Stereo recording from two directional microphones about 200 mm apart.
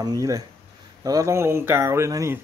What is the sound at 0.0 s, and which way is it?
A man's voice, 20° right (ahead or behind).